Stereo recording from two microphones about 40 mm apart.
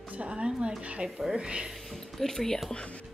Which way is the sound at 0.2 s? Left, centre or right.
Right.